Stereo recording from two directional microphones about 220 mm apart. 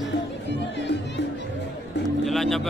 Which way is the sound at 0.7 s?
50° left (ahead or behind).